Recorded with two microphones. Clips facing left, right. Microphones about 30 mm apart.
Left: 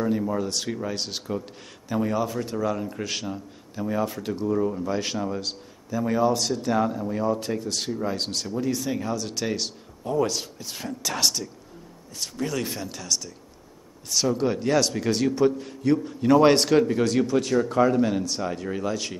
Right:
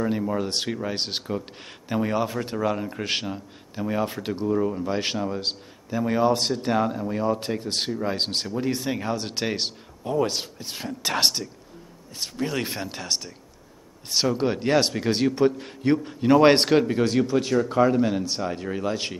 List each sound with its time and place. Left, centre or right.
0.4 s a man's voice: right
11.1 s a man's voice: right; by 18.2 s centre
18.8 s a man's voice: right